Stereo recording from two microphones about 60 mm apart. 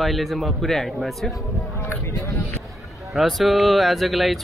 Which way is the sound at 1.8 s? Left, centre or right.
Left.